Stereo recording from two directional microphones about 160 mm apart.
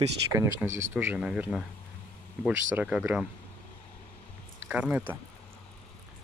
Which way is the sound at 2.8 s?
10° right (ahead or behind).